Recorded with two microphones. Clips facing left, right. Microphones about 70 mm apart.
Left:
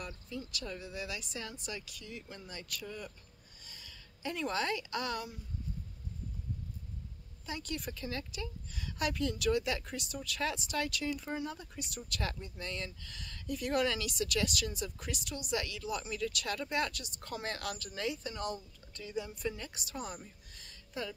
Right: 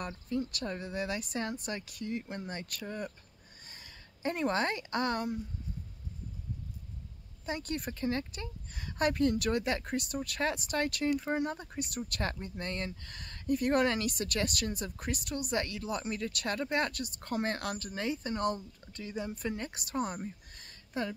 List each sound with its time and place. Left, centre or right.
0.0 s a woman's voice: right
7.4 s a woman's voice: right